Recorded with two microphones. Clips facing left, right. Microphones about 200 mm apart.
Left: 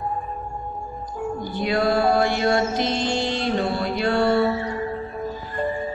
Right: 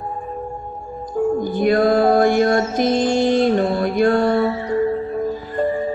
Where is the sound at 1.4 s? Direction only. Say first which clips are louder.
Right 4 dB; 50° right (ahead or behind).